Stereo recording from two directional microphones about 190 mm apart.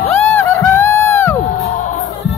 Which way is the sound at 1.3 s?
35° left (ahead or behind).